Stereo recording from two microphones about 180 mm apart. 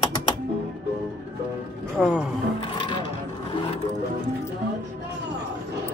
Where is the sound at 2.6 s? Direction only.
25° left (ahead or behind).